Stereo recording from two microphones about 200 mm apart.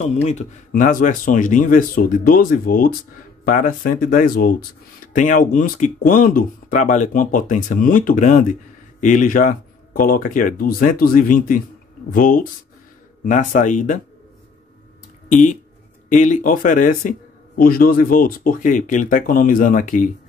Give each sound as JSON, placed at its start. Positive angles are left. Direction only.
{"t": 0.0, "sound": "speech", "side_deg": 35}
{"t": 16.1, "sound": "speech", "side_deg": 40}